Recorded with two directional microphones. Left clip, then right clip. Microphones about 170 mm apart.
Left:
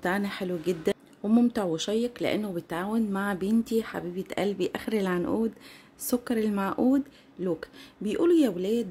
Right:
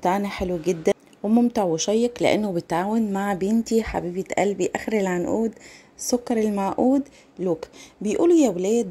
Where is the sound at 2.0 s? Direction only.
30° right (ahead or behind).